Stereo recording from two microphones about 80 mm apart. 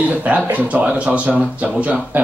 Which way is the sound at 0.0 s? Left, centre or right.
Centre.